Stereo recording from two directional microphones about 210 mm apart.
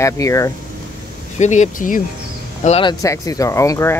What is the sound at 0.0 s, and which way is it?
Speech, 15° left (ahead or behind).